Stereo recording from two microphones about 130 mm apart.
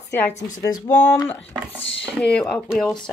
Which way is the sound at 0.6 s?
30° left (ahead or behind).